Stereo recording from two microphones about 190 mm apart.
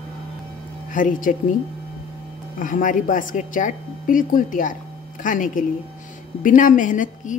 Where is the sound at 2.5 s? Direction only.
45° left (ahead or behind).